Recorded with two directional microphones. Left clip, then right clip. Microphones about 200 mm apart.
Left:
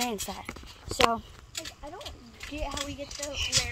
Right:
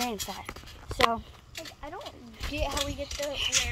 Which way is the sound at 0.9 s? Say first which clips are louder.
Left 1 dB; 10° left (ahead or behind).